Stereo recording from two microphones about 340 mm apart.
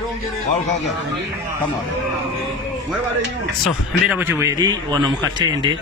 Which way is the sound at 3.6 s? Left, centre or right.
Centre.